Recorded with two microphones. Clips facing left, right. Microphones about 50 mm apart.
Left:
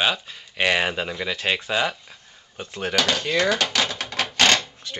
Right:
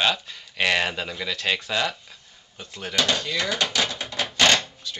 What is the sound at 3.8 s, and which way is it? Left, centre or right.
Typewriter, left.